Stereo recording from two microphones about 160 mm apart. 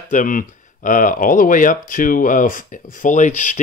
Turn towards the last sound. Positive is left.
turn(degrees=50)  # may be behind; listen again after turning